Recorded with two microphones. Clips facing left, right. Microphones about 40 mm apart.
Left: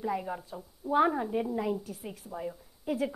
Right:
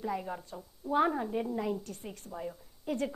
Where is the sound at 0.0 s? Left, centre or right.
Centre.